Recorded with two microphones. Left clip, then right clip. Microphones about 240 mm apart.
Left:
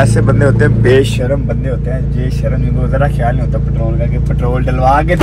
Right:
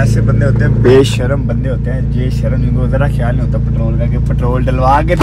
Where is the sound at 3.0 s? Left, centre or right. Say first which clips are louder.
Left 4 dB; centre.